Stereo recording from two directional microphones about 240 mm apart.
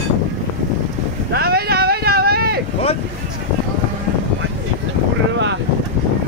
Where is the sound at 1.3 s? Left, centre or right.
Right.